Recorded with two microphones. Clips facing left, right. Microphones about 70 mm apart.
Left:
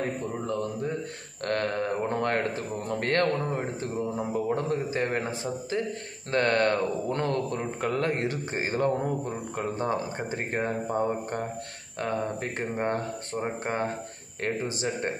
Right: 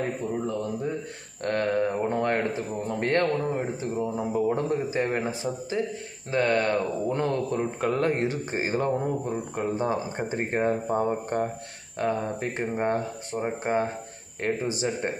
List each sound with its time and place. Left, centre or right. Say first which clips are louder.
0.5 s speech: right 1 dB; centre
3.5 s speech: right 2 dB; centre
4.6 s speech: right 2 dB; right
6.3 s speech: even; centre
8.9 s speech: right 2 dB; centre
14.4 s speech: right 2 dB; right